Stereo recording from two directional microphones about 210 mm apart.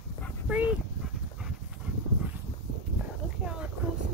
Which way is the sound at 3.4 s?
5° right (ahead or behind).